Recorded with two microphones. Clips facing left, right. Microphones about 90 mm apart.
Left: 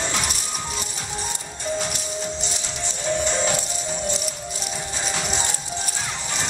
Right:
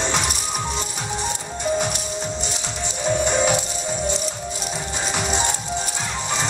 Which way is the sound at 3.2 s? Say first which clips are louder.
Right 6 dB; 15° right (ahead or behind).